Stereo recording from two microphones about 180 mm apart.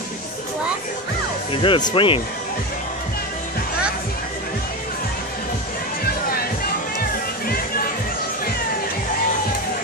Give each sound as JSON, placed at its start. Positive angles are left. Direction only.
{"t": 1.5, "sound": "speech", "side_deg": 30}
{"t": 7.0, "sound": "music", "side_deg": 55}